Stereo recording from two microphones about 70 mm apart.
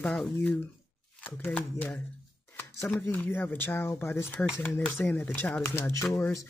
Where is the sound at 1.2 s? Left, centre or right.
Left.